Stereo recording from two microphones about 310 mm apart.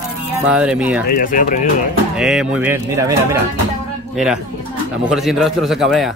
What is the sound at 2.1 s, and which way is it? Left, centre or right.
Speech, centre.